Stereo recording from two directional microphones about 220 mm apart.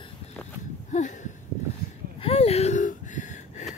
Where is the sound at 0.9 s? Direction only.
35° left (ahead or behind).